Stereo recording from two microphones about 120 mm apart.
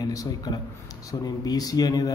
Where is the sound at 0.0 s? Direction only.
30° left (ahead or behind).